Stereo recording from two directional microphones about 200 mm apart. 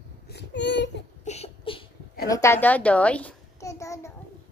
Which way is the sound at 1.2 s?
30° left (ahead or behind).